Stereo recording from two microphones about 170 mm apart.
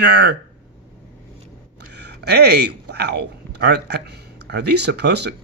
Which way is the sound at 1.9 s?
85° right.